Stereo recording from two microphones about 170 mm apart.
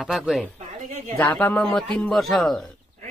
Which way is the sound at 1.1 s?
10° left (ahead or behind).